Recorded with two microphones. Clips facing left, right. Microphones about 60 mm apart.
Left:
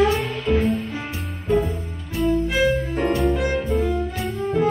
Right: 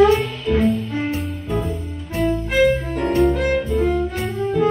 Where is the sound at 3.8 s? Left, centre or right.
Right.